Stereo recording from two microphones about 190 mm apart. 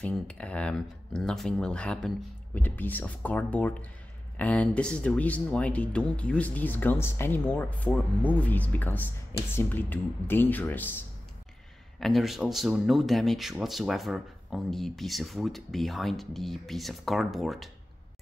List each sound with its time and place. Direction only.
0.0 s speech: 5° left (ahead or behind)
12.0 s speech: centre (ahead or behind)